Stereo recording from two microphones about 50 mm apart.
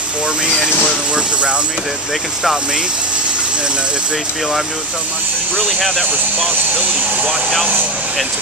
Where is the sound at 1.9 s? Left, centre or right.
Centre.